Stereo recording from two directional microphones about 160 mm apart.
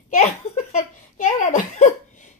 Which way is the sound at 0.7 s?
55° left (ahead or behind).